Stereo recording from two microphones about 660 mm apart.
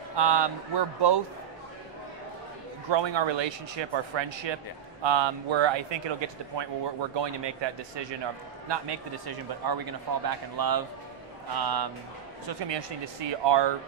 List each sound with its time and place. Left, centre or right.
0.1 s speech: right
2.9 s speech: right